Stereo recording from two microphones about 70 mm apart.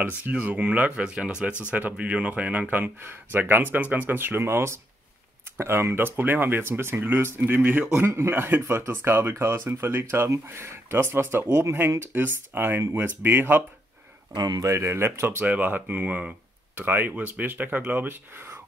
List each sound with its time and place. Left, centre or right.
0.0 s speech: right
8.1 s speech: right
9.7 s speech: right
14.3 s speech: right
14.6 s speech: right
15.4 s speech: right